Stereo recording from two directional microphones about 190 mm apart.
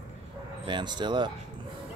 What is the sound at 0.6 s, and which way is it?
Speech, 25° right (ahead or behind).